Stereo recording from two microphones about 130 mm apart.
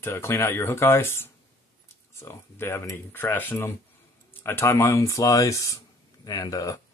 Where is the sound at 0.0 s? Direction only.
20° left (ahead or behind).